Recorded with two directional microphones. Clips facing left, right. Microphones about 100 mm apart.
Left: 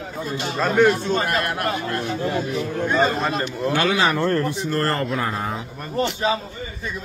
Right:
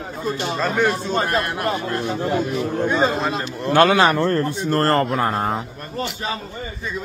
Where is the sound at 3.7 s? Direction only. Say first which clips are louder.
Right 6 dB; 55° right (ahead or behind).